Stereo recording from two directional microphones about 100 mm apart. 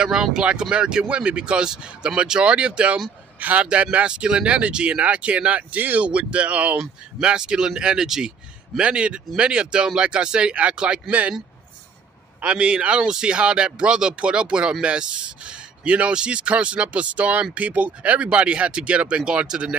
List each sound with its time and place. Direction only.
0.0 s speech: 5° right (ahead or behind)
12.4 s speech: 10° right (ahead or behind)